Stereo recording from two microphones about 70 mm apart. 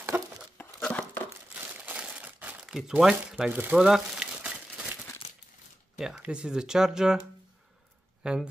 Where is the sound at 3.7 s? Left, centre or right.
Centre.